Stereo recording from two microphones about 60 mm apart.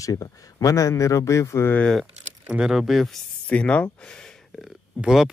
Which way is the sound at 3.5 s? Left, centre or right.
Left.